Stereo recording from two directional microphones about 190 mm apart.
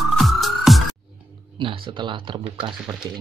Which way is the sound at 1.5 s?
25° right (ahead or behind).